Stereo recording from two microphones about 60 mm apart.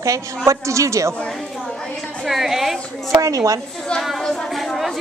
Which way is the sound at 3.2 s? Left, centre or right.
Right.